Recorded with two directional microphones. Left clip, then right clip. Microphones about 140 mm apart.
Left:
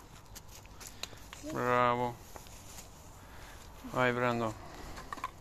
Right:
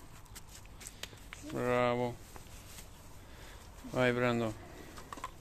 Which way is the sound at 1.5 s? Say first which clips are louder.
Left 2 dB; 30° right (ahead or behind).